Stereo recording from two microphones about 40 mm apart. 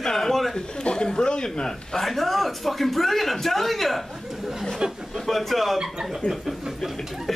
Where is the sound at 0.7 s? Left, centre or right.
Centre.